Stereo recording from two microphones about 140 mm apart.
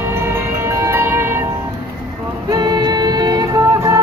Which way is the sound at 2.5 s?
30° right (ahead or behind).